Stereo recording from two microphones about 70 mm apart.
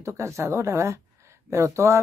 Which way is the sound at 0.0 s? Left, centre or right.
Right.